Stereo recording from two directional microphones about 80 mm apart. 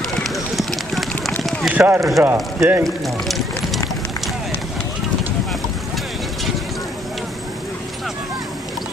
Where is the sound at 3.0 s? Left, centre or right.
Centre.